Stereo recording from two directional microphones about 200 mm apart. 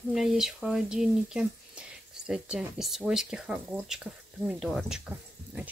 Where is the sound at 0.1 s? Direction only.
Centre (ahead or behind).